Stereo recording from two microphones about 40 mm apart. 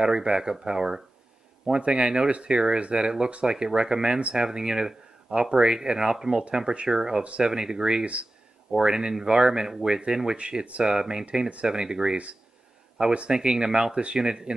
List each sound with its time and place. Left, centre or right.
0.0 s speech: right
8.0 s speech: right
8.7 s speech: centre
10.3 s speech: right
13.3 s speech: centre